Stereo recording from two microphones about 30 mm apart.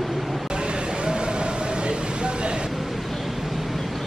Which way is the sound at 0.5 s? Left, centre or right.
Right.